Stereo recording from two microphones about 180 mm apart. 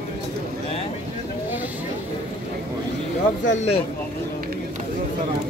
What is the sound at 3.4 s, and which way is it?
Speech, 40° left (ahead or behind).